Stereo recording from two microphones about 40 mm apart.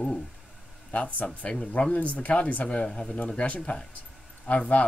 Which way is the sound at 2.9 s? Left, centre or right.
Centre.